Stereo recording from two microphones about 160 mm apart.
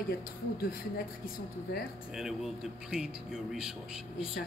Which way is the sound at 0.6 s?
70° left (ahead or behind).